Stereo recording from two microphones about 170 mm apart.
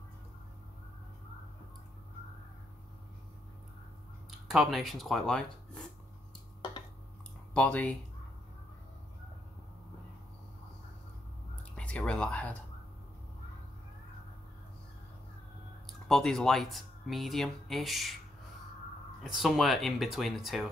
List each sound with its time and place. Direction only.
4.5 s speech: centre (ahead or behind)
7.5 s speech: 10° left (ahead or behind)
11.7 s speech: 5° left (ahead or behind)
15.9 s speech: centre (ahead or behind)
19.2 s speech: centre (ahead or behind)